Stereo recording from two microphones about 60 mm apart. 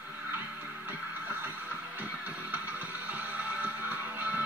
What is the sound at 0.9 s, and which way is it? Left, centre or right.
Music, right.